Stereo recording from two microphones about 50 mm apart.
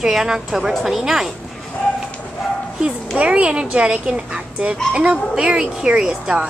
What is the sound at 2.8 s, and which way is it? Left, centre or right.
Speech, right.